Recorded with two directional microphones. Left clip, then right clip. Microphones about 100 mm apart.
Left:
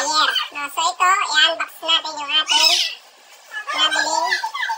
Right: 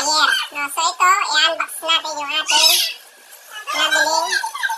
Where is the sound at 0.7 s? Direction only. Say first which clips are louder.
Right 1 dB; 15° right (ahead or behind).